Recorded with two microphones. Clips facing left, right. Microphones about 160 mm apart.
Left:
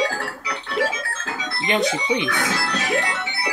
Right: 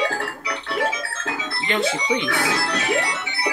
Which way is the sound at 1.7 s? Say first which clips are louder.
Left 1 dB; 15° left (ahead or behind).